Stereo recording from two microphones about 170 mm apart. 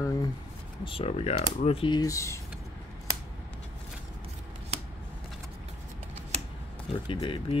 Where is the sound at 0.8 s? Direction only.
35° left (ahead or behind); by 2.4 s 20° left (ahead or behind).